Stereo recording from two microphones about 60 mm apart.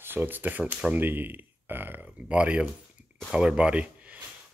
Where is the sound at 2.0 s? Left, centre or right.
Centre.